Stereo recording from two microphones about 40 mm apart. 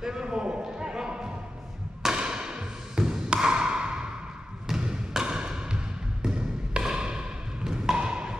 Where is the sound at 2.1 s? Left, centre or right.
Right.